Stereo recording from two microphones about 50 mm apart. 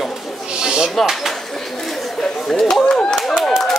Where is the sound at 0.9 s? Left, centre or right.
Centre.